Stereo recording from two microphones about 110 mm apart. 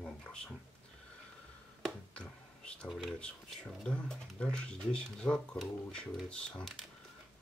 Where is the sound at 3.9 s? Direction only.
10° left (ahead or behind).